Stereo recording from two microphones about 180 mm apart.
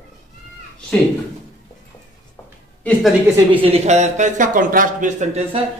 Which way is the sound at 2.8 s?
5° left (ahead or behind).